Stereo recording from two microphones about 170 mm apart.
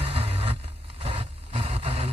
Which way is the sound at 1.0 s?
30° right (ahead or behind).